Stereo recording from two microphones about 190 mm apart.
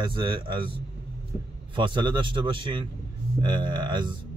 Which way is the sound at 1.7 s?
25° right (ahead or behind).